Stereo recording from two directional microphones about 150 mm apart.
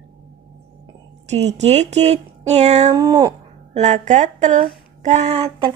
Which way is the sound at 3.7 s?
50° right (ahead or behind).